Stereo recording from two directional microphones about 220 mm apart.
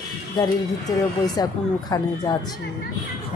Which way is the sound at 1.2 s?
15° left (ahead or behind).